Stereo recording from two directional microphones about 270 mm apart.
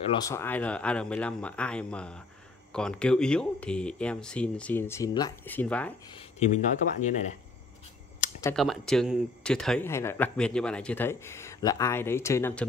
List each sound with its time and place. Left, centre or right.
0.2 s speech: centre
6.1 s speech: left
8.5 s speech: centre